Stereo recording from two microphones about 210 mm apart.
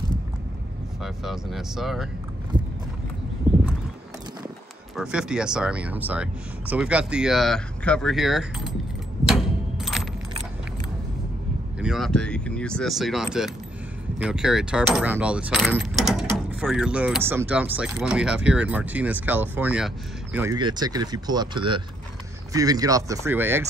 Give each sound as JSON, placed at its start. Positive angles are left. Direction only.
{"t": 1.0, "sound": "speech", "side_deg": 0}
{"t": 3.5, "sound": "horse", "side_deg": -5}
{"t": 4.9, "sound": "speech", "side_deg": -5}
{"t": 9.2, "sound": "a sound", "side_deg": 0}
{"t": 11.8, "sound": "speech", "side_deg": 0}